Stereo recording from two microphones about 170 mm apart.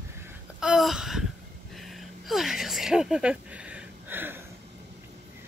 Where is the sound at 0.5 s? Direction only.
5° right (ahead or behind).